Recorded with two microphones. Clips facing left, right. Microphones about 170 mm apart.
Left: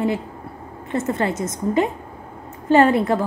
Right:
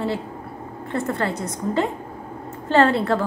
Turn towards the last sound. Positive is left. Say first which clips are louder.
# left 2 dB
turn(degrees=15)  # may be behind; listen again after turning